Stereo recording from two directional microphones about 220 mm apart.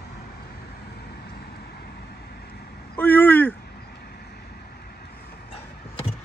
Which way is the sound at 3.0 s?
10° left (ahead or behind).